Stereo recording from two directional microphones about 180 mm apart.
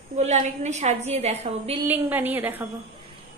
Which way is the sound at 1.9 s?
10° right (ahead or behind).